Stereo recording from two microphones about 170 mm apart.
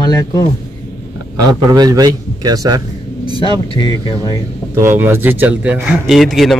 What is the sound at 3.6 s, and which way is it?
Speech, 30° left (ahead or behind).